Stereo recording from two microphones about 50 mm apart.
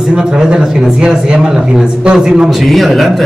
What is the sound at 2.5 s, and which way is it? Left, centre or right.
Speech, centre.